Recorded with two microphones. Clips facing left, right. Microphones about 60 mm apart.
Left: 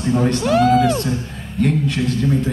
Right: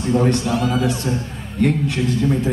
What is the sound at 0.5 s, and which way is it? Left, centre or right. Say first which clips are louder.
Speech: left 6 dB; left.